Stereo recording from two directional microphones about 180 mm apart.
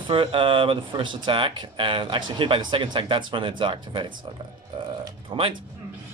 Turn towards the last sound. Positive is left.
turn(degrees=-30)  # may be behind; listen again after turning